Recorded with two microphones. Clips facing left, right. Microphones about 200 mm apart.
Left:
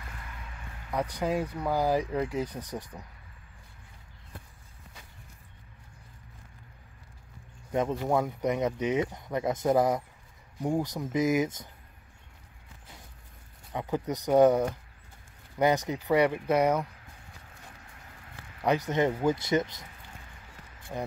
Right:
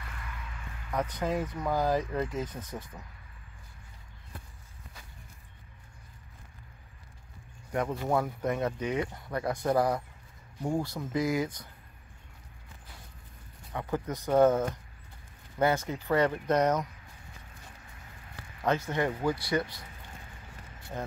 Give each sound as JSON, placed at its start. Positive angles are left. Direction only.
{"t": 0.9, "sound": "speech", "side_deg": 10}
{"t": 7.7, "sound": "speech", "side_deg": 20}
{"t": 13.7, "sound": "speech", "side_deg": 20}
{"t": 18.9, "sound": "speech", "side_deg": 20}
{"t": 20.9, "sound": "speech", "side_deg": 15}